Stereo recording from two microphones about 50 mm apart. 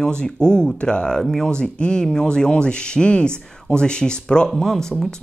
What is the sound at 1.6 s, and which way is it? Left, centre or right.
Speech, centre.